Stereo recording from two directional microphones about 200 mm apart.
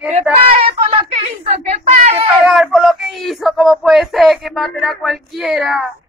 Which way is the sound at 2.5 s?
Centre (ahead or behind).